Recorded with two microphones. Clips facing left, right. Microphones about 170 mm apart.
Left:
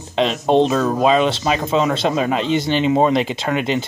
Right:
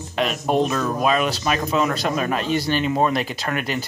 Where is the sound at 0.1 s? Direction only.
25° left (ahead or behind).